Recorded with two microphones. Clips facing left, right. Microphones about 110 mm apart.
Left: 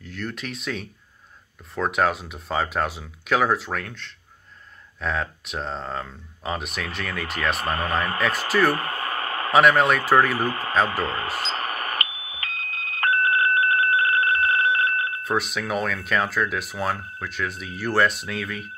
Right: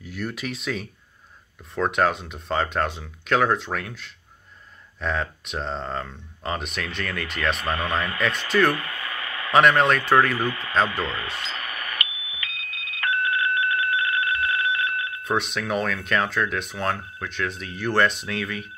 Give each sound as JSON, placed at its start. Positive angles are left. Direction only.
{"t": 0.0, "sound": "speech", "side_deg": -10}
{"t": 7.5, "sound": "speech", "side_deg": 40}
{"t": 8.5, "sound": "speech", "side_deg": 5}
{"t": 8.7, "sound": "a sound", "side_deg": 40}
{"t": 9.5, "sound": "speech", "side_deg": 5}
{"t": 10.3, "sound": "speech", "side_deg": 40}
{"t": 10.9, "sound": "smoke detector", "side_deg": 40}
{"t": 15.2, "sound": "speech", "side_deg": 0}